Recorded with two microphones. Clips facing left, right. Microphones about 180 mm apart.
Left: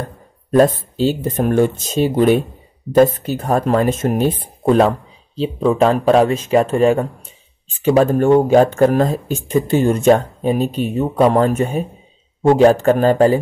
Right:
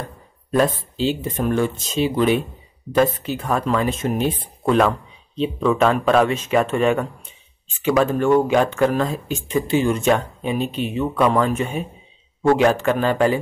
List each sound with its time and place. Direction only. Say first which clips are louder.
0.6 s speech: left 6 dB; 45° left (ahead or behind)